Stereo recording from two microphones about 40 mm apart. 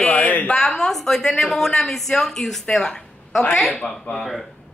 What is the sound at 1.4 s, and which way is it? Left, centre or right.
Speech, centre.